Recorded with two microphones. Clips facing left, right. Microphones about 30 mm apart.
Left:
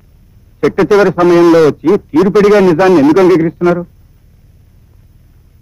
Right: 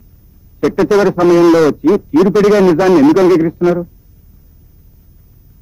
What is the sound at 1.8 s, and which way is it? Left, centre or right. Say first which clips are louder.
Speech: left 1 dB; left.